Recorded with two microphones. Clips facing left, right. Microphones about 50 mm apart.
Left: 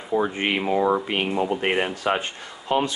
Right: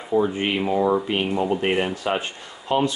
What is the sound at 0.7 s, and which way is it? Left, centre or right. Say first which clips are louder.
Speech: right 1 dB; centre.